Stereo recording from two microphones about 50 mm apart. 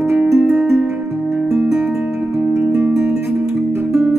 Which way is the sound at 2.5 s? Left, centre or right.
Right.